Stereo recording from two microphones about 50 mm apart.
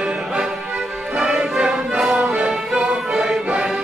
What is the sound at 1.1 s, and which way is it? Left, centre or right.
Music, centre.